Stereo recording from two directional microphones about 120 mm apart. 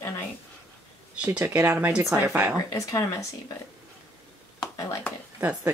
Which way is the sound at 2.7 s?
25° left (ahead or behind).